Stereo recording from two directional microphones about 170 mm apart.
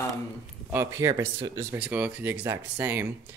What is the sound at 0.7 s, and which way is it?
Speech, 15° right (ahead or behind).